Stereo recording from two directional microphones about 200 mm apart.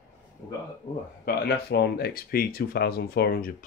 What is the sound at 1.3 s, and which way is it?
Speech, 50° left (ahead or behind).